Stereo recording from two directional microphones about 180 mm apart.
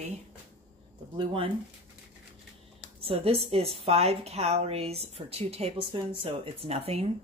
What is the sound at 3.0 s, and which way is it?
A woman's voice, 30° right (ahead or behind).